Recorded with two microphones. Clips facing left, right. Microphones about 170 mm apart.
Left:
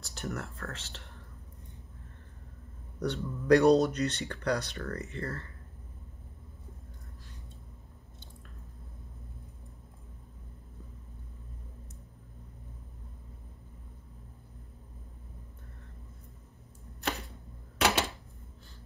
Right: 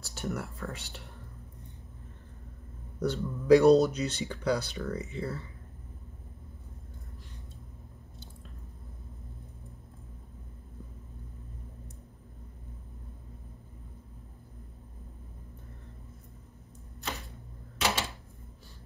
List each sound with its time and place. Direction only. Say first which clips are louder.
0.1 s speech: right 2 dB; 5° right (ahead or behind)
3.0 s speech: right 2 dB; 5° right (ahead or behind)
17.7 s a sound: left 3 dB; 60° left (ahead or behind)